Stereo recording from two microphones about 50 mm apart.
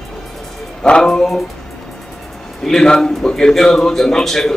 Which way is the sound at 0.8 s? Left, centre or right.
Centre.